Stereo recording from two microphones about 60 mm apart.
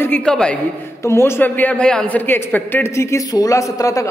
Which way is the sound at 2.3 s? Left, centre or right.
Left.